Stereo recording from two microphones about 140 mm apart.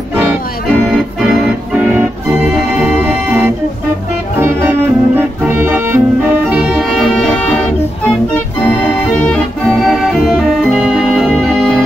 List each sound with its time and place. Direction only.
0.1 s music: 10° right (ahead or behind)
0.7 s organ: centre (ahead or behind)
3.0 s music: 15° right (ahead or behind)
6.5 s music: 5° right (ahead or behind)
8.6 s music: 10° left (ahead or behind)